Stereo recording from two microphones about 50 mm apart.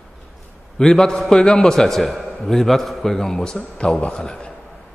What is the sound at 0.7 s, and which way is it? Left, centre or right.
A man's voice, centre.